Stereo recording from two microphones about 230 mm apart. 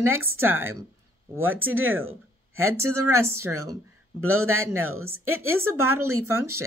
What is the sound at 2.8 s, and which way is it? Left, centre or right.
A man's voice, right.